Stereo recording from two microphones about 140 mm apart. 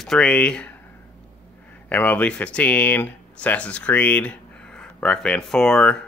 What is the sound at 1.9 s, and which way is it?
Speech, 10° left (ahead or behind).